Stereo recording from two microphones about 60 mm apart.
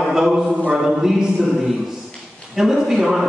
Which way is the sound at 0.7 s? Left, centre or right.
Centre.